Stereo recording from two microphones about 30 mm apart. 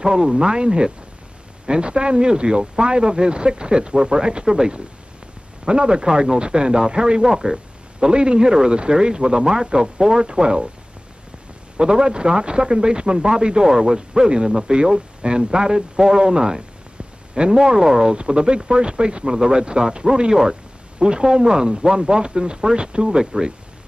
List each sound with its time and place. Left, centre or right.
0.0 s speech: centre
1.7 s speech: right
3.9 s speech: centre
8.1 s speech: right
10.4 s speech: right
11.8 s speech: right
18.1 s speech: right
19.3 s speech: centre
19.6 s speech: right